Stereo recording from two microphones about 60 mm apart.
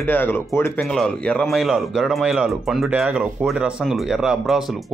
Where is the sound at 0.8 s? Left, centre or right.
Centre.